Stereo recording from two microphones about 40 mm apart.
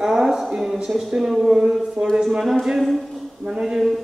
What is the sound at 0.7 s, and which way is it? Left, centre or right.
Speech, centre.